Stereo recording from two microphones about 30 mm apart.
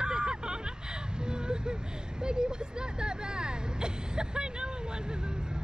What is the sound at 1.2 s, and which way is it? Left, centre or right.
Vehicle, right.